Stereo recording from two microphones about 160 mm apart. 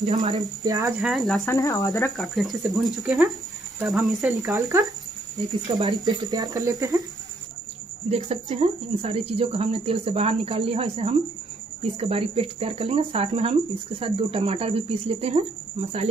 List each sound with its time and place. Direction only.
0.0 s speech: 25° right (ahead or behind)
1.0 s speech: centre (ahead or behind)
1.4 s speech: 20° left (ahead or behind)
2.1 s speech: centre (ahead or behind)
4.5 s speech: 20° right (ahead or behind)
8.3 s speech: 45° right (ahead or behind)